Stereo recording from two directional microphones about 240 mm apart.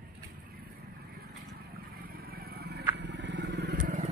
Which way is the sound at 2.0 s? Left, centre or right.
Right.